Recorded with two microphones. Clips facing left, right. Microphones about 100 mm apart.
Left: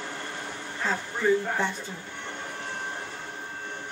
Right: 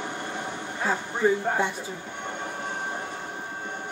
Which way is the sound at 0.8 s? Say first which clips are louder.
Right 1 dB; 15° right (ahead or behind).